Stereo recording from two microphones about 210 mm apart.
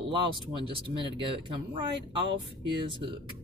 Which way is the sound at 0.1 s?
25° right (ahead or behind).